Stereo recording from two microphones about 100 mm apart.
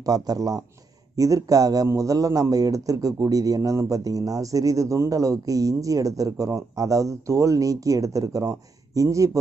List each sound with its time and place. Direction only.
0.0 s a man's voice: 35° right (ahead or behind)